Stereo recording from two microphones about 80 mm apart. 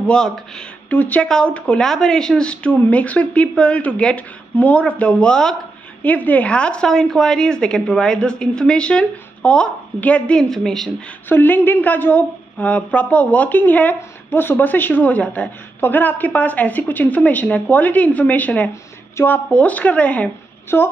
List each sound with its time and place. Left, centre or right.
0.0 s a woman's voice: centre
6.0 s a woman's voice: centre
11.2 s a woman's voice: left